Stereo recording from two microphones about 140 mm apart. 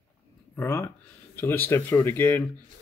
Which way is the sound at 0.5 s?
15° left (ahead or behind).